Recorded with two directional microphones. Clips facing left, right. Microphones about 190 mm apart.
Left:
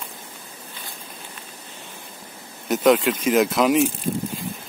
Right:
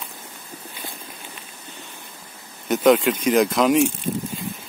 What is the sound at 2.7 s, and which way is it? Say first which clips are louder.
Speech: right 1 dB; centre (ahead or behind).